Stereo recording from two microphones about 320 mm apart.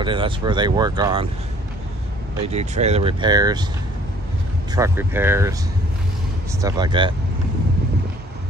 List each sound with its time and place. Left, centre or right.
0.0 s speech: centre
2.4 s speech: right
4.7 s speech: centre
6.6 s speech: centre